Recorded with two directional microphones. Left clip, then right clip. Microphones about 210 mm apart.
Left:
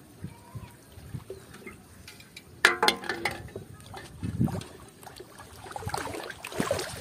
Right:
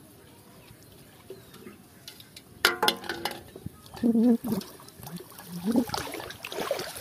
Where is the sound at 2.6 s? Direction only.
Centre (ahead or behind).